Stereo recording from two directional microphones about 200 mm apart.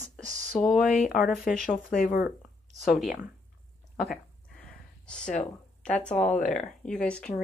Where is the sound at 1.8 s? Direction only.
45° left (ahead or behind).